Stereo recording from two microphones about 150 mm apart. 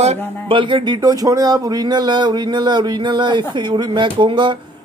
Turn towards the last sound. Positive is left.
turn(degrees=-30)  # may be behind; listen again after turning